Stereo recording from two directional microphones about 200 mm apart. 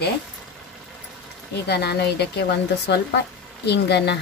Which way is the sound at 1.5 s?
55° left (ahead or behind).